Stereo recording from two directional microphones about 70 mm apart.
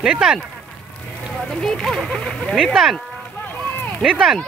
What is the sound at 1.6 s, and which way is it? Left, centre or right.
Speech, centre.